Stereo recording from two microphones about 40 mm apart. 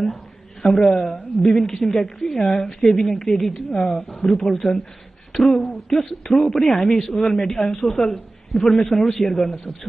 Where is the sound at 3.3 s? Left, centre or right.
Centre.